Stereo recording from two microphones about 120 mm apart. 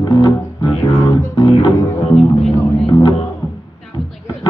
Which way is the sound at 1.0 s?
25° left (ahead or behind).